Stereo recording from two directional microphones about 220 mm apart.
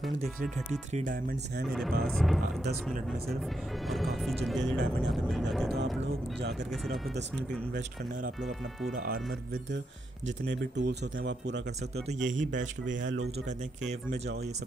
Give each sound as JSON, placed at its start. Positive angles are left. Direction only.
{"t": 1.7, "sound": "speech", "side_deg": 0}
{"t": 3.9, "sound": "speech", "side_deg": 0}
{"t": 10.2, "sound": "speech", "side_deg": -50}
{"t": 12.1, "sound": "speech", "side_deg": -35}
{"t": 13.0, "sound": "speech", "side_deg": -55}